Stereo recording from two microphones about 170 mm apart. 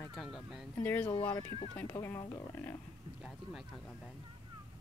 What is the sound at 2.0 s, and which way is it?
Speech, 20° left (ahead or behind).